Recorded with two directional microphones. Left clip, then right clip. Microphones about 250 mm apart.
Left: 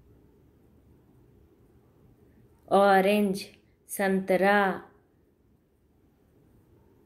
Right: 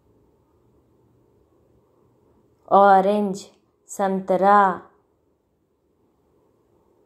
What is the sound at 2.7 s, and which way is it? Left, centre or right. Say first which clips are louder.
A woman's voice: right 7 dB; centre.